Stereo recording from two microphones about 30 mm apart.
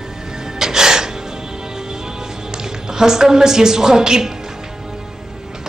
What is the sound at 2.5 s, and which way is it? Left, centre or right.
A woman's voice, centre.